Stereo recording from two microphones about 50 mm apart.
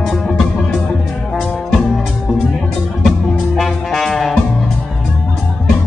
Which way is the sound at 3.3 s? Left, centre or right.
Centre.